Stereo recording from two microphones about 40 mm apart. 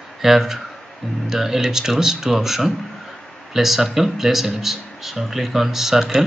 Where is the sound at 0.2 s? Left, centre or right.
Centre.